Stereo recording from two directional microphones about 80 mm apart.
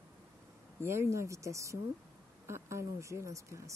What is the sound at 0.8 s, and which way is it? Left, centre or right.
Speech, right.